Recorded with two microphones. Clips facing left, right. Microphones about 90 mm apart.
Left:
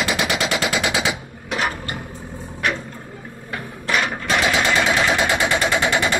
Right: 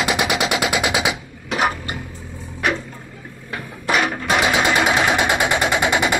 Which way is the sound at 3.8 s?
5° right (ahead or behind).